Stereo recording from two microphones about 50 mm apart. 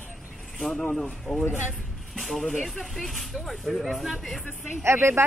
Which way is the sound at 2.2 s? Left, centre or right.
Centre.